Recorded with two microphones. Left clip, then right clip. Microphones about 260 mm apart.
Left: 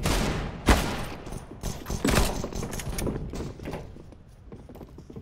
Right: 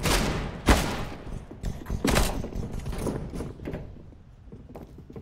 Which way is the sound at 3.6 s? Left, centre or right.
Centre.